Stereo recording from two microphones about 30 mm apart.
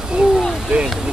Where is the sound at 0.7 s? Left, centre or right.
Right.